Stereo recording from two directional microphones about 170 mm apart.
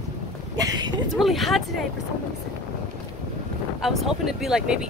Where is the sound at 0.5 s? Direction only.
20° right (ahead or behind).